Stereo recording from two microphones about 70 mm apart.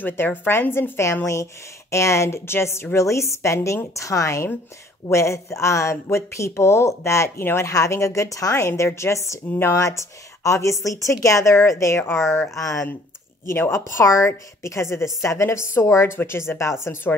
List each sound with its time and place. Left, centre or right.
0.0 s a woman's voice: left
13.5 s a woman's voice: left